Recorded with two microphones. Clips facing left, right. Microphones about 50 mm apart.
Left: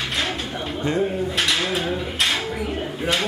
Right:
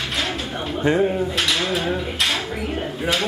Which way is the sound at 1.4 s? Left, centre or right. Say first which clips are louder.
Right 1 dB; centre.